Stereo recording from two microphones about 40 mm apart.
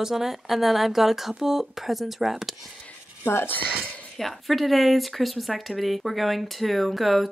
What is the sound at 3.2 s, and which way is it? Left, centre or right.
Speech, left.